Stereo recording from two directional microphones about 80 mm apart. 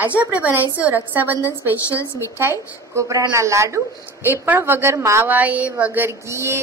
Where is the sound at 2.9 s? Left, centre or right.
Right.